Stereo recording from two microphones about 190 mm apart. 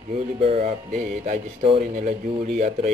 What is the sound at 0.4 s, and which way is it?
Speech, 35° right (ahead or behind).